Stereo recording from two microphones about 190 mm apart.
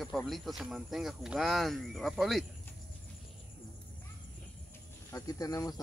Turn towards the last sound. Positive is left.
turn(degrees=20)  # may be behind; listen again after turning